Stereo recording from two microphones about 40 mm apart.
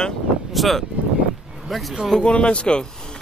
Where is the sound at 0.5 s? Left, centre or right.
Centre.